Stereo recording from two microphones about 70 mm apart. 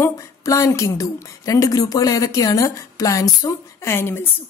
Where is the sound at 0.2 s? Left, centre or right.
Left.